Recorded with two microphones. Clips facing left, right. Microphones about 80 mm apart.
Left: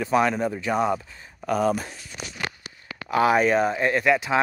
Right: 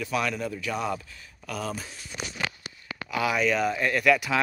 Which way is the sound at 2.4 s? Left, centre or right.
Left.